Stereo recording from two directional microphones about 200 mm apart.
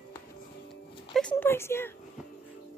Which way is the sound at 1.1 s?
5° left (ahead or behind).